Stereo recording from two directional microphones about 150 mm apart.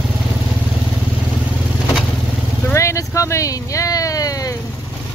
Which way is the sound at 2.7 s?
20° left (ahead or behind).